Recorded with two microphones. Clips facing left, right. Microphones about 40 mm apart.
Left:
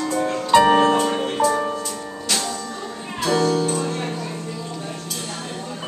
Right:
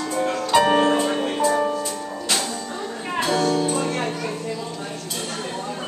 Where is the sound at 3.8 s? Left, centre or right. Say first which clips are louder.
Right 1 dB; right.